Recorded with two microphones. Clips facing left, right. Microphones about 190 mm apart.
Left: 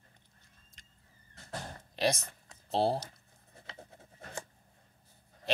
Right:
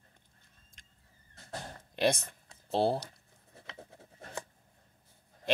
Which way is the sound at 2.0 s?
55° right (ahead or behind).